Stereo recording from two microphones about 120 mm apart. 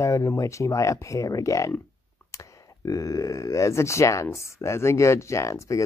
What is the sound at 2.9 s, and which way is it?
Speech, 30° left (ahead or behind).